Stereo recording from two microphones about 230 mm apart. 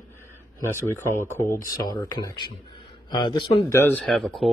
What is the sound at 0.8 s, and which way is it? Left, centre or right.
A man's voice, centre.